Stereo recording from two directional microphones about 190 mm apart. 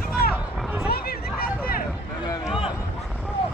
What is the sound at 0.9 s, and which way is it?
Hubbub, 55° left (ahead or behind).